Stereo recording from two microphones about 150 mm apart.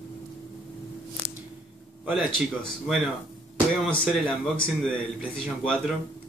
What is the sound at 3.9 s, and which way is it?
Speech, 5° left (ahead or behind).